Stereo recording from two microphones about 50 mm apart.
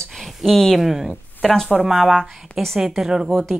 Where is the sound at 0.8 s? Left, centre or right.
Centre.